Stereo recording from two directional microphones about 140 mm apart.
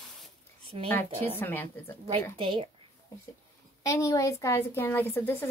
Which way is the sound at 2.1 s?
40° right (ahead or behind).